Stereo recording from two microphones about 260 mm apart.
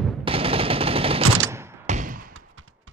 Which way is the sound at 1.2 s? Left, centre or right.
Right.